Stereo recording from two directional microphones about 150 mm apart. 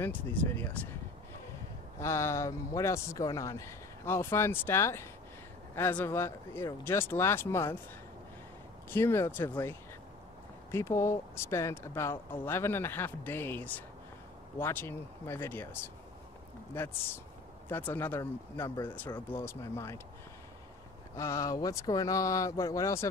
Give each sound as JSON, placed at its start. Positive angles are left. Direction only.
{"t": 0.0, "sound": "speech", "side_deg": 10}
{"t": 2.0, "sound": "speech", "side_deg": 20}
{"t": 8.9, "sound": "speech", "side_deg": 15}
{"t": 21.2, "sound": "speech", "side_deg": 20}